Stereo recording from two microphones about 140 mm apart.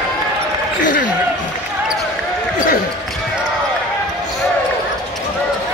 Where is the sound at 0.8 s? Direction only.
70° left (ahead or behind).